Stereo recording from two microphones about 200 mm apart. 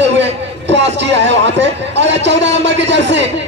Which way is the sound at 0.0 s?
60° right (ahead or behind).